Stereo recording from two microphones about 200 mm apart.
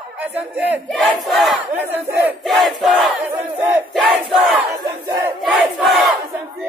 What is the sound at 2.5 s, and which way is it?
Crowd, centre (ahead or behind).